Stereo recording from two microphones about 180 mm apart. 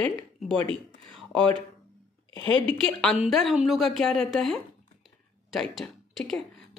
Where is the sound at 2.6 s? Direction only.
5° left (ahead or behind).